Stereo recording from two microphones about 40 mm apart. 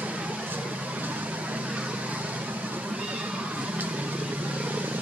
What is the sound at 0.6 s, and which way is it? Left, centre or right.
Vehicle, right.